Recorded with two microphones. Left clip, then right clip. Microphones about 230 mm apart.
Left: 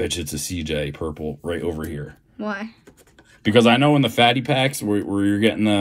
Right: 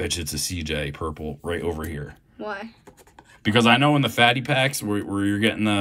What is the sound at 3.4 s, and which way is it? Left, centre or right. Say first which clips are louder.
Speech: left 2 dB; centre.